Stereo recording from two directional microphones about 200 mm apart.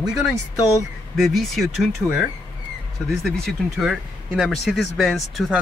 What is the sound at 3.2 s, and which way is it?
Speech, centre (ahead or behind).